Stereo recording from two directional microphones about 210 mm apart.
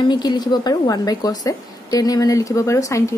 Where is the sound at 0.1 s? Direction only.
20° left (ahead or behind).